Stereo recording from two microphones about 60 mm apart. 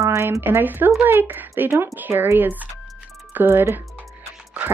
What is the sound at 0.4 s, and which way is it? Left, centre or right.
Speech, right.